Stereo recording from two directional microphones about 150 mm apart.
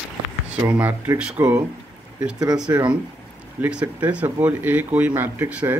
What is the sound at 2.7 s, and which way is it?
Speech, 15° right (ahead or behind).